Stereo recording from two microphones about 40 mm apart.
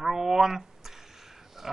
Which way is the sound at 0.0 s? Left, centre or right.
Centre.